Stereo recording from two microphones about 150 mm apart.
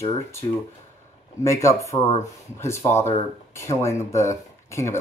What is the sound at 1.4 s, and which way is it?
Speech, 20° left (ahead or behind).